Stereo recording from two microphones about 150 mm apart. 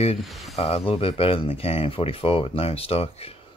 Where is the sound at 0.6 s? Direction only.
40° left (ahead or behind).